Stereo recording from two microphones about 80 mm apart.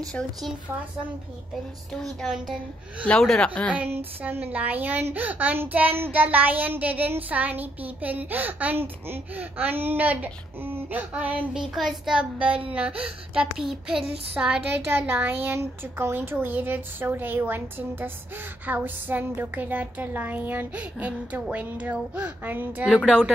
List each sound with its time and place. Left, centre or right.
0.2 s speech: left
1.9 s a child's voice: centre
3.7 s child singing: right
11.7 s a child's voice: centre
12.2 s child singing: centre
14.6 s child singing: right